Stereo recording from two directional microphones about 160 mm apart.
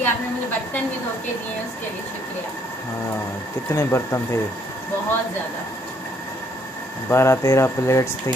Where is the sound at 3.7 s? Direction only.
15° left (ahead or behind).